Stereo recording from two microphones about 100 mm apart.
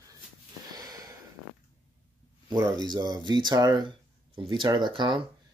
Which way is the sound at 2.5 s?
40° right (ahead or behind).